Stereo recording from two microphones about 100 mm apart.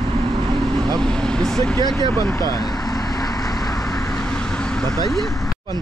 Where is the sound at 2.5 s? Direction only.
35° left (ahead or behind).